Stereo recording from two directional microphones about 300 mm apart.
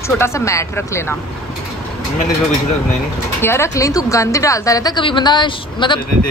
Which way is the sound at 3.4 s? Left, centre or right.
Centre.